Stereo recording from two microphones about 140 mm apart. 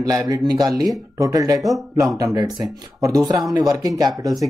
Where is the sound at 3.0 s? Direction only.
25° right (ahead or behind).